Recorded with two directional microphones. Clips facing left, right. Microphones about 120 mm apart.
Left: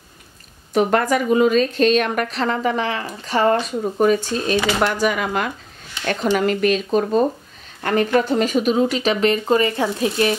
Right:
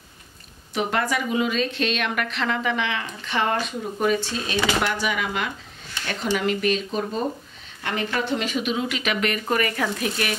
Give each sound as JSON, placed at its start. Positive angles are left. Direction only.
{"t": 0.7, "sound": "a woman's voice", "side_deg": 45}